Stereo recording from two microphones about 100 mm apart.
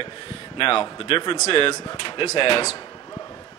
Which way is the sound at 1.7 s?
35° left (ahead or behind).